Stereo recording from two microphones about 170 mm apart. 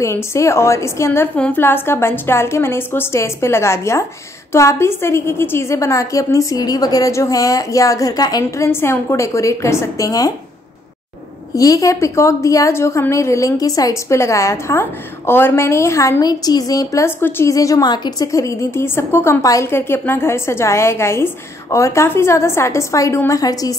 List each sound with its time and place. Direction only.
0.0 s a woman's voice: 15° left (ahead or behind)
11.5 s a woman's voice: 20° left (ahead or behind)